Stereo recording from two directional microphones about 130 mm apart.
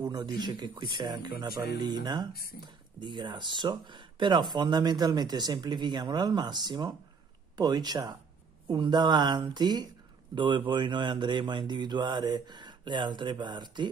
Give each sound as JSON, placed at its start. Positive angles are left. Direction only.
{"t": 0.1, "sound": "speech", "side_deg": -35}